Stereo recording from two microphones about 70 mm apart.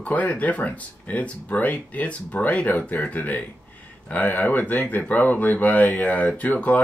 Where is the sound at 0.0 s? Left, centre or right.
Left.